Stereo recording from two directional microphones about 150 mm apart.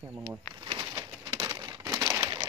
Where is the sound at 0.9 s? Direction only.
30° right (ahead or behind); by 2.3 s 15° right (ahead or behind).